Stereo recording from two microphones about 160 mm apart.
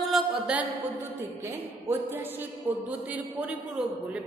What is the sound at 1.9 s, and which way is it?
A man's voice, 15° right (ahead or behind).